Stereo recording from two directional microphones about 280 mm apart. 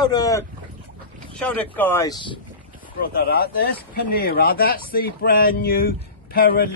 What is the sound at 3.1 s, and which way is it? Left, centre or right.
Speech, left.